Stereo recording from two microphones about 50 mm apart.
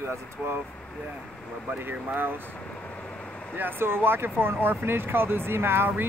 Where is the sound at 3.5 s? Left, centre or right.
Right.